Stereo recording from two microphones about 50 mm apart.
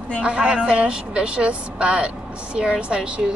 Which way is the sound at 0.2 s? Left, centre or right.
Right.